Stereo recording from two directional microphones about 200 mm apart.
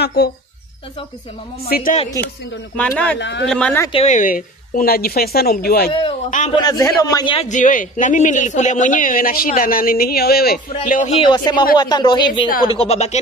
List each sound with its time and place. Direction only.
0.0 s speech: 55° left (ahead or behind)
1.7 s speech: 45° left (ahead or behind)
2.0 s speech: 15° left (ahead or behind)
3.2 s speech: 60° left (ahead or behind)
3.4 s speech: 5° left (ahead or behind)
3.9 s speech: 35° left (ahead or behind)
6.5 s a man's voice: 20° left (ahead or behind)
7.4 s a man's voice: 40° left (ahead or behind)